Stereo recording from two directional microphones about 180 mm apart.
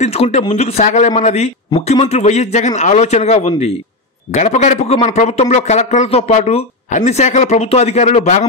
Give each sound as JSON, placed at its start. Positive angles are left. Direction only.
{"t": 0.0, "sound": "a man's voice", "side_deg": 35}